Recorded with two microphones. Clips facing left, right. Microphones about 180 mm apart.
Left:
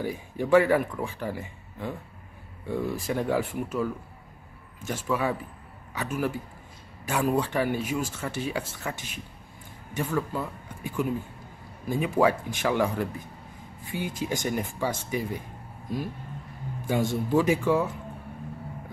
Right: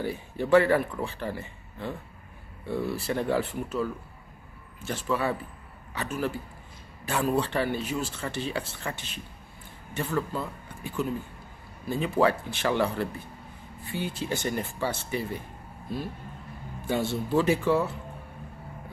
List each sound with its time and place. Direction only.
0.0 s speech: 10° left (ahead or behind)